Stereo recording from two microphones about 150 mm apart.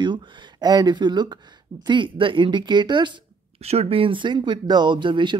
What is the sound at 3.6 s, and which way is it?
Speech, 45° right (ahead or behind).